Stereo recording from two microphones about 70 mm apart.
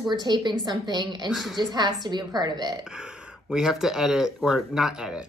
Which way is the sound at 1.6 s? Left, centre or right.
Right.